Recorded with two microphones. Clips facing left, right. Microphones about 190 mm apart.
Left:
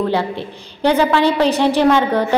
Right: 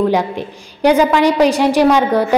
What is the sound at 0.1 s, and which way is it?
A woman's voice, 15° right (ahead or behind).